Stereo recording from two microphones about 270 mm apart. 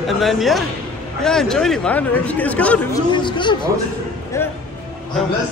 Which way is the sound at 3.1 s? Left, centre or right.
Centre.